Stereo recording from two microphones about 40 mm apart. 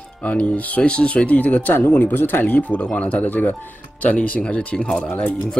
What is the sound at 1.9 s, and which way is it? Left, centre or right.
Speech, left.